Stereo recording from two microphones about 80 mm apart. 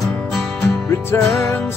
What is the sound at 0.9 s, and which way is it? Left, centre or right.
Music, left.